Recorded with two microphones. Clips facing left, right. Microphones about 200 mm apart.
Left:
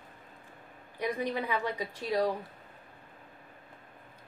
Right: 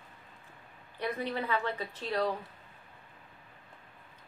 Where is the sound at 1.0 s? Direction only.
10° left (ahead or behind).